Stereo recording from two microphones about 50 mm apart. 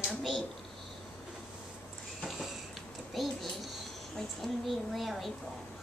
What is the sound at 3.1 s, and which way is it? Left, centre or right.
A child's voice, centre.